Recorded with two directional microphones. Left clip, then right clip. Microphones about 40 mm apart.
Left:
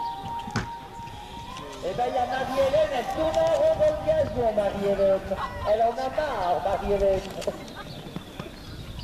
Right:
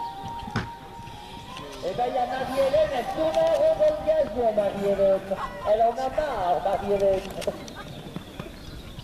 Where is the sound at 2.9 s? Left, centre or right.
Centre.